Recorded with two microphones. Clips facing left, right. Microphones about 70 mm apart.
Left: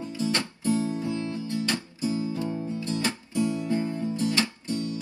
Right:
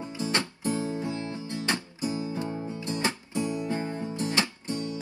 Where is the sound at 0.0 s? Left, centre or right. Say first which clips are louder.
Left 1 dB; right.